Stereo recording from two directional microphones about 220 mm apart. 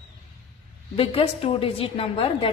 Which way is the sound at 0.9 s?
25° left (ahead or behind).